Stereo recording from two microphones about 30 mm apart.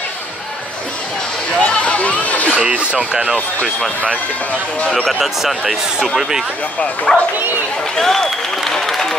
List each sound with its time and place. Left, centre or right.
1.6 s chatter: left
2.5 s speech: right
5.2 s speech: centre
7.1 s speech: centre
7.9 s applause: centre